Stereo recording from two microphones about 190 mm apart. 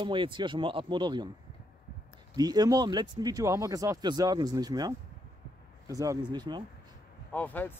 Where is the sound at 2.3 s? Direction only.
20° right (ahead or behind).